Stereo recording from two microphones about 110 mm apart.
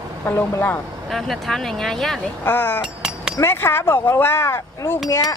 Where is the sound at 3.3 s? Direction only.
20° left (ahead or behind).